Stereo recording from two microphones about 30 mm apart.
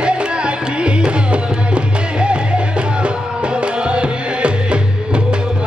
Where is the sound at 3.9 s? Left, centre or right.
Right.